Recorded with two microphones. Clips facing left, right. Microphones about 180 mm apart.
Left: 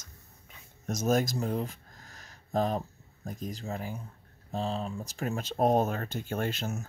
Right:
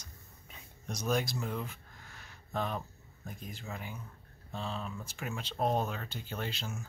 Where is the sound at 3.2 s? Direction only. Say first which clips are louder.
Left 7 dB; 40° left (ahead or behind).